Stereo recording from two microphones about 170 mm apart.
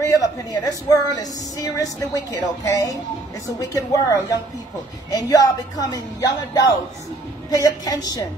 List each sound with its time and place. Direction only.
0.0 s a woman's voice: 20° left (ahead or behind)